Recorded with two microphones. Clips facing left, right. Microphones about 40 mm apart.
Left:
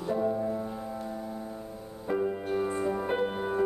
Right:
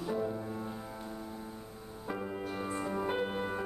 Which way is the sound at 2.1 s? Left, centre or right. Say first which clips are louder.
Left 8 dB; centre.